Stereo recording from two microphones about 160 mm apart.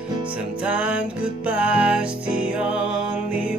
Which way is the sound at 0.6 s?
10° right (ahead or behind).